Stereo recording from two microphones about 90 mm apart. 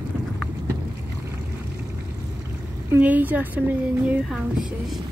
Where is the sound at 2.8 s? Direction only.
20° right (ahead or behind).